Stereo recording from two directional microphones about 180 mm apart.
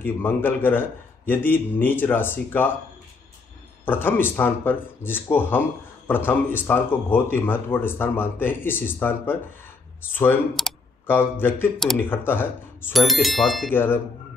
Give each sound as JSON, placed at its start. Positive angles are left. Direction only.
{"t": 0.0, "sound": "speech", "side_deg": 10}
{"t": 3.8, "sound": "speech", "side_deg": 10}
{"t": 12.9, "sound": "speech", "side_deg": 0}
{"t": 13.7, "sound": "speech", "side_deg": 10}